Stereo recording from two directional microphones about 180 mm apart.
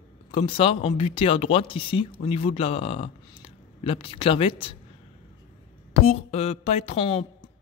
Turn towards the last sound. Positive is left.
turn(degrees=35)  # may be behind; listen again after turning